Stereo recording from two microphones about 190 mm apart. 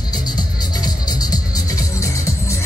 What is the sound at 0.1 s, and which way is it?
Music, 20° left (ahead or behind).